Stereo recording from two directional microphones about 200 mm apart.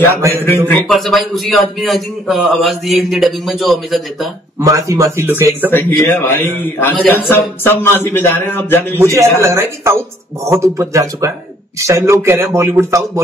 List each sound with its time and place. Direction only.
0.7 s a man's voice: 5° left (ahead or behind)
4.6 s a man's voice: 15° right (ahead or behind)
5.7 s a man's voice: 10° left (ahead or behind)
8.9 s a man's voice: 15° right (ahead or behind)